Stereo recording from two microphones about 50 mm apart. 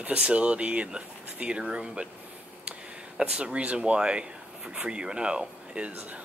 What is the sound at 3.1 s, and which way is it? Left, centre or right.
Speech, centre.